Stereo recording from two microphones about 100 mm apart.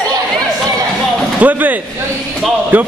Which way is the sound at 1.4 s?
15° right (ahead or behind).